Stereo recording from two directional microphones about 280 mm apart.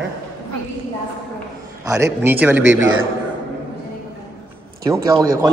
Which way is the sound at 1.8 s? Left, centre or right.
Centre.